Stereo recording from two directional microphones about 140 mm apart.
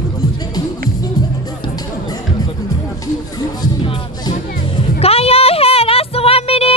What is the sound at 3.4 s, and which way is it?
Music, 35° left (ahead or behind).